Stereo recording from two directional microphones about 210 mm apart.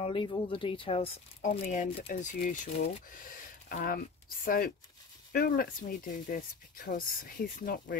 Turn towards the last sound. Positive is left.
turn(degrees=45)  # may be behind; listen again after turning